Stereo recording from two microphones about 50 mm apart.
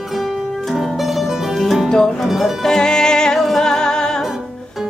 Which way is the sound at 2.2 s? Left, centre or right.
Centre.